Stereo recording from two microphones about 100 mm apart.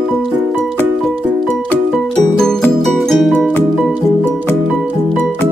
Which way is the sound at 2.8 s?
Centre (ahead or behind).